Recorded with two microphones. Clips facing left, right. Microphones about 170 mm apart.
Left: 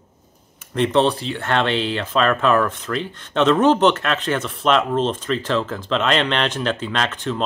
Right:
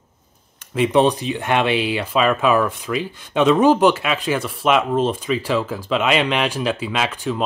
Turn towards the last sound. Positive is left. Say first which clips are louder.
# right 1 dB
turn(degrees=-10)  # may be behind; listen again after turning